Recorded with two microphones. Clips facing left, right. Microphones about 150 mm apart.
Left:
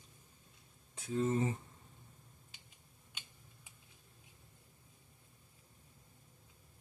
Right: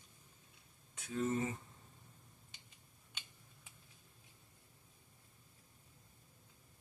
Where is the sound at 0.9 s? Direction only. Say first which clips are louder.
Left 3 dB; 30° left (ahead or behind).